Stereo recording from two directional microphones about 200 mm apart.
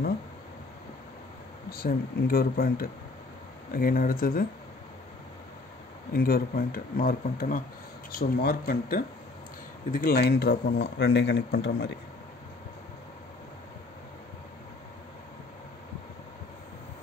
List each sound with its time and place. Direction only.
1.7 s speech: 50° left (ahead or behind)
6.1 s speech: 45° left (ahead or behind)